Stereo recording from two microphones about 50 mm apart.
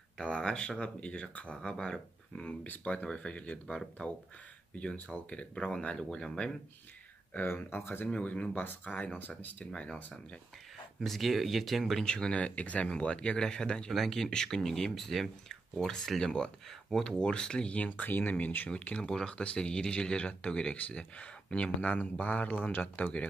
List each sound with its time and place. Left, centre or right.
0.2 s speech: centre
4.9 s speech: left
5.9 s speech: centre
7.4 s speech: left
8.5 s speech: left
9.7 s speech: centre
11.0 s speech: centre
12.0 s speech: centre
12.4 s speech: left
18.7 s speech: left
21.8 s speech: left